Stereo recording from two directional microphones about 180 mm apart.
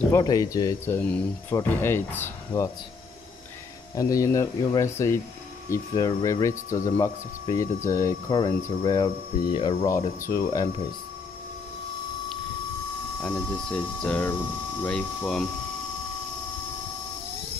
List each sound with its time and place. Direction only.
0.1 s speech: 20° left (ahead or behind)
3.9 s speech: 20° left (ahead or behind)
9.8 s speech: 15° left (ahead or behind)
13.2 s speech: 5° left (ahead or behind)